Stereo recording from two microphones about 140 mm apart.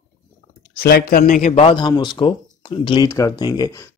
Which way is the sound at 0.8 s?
90° left.